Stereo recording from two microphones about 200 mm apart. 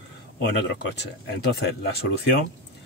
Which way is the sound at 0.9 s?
55° left (ahead or behind).